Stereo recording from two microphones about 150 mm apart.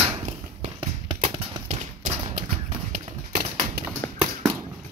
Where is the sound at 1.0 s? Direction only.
35° right (ahead or behind).